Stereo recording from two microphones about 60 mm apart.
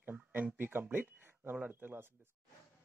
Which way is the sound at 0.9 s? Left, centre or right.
Right.